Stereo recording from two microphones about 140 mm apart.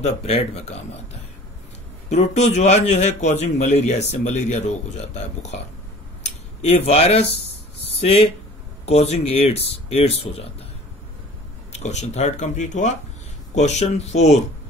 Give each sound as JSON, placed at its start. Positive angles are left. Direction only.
{"t": 0.0, "sound": "a man's voice", "side_deg": 50}
{"t": 2.0, "sound": "a man's voice", "side_deg": 55}
{"t": 6.2, "sound": "a man's voice", "side_deg": 50}
{"t": 11.7, "sound": "a man's voice", "side_deg": 55}